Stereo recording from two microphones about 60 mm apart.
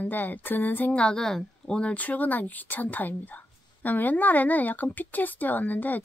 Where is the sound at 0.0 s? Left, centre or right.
Left.